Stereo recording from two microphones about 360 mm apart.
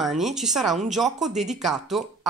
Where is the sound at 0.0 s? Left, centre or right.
Centre.